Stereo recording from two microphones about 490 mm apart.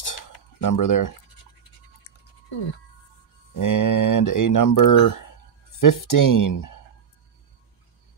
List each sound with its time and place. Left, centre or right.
0.0 s cutlery: left
3.5 s speech: left